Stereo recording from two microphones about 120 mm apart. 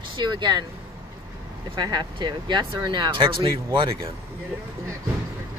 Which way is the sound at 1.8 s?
35° right (ahead or behind).